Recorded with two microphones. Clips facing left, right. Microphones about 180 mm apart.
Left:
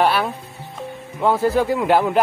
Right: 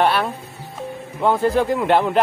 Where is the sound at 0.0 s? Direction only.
Centre (ahead or behind).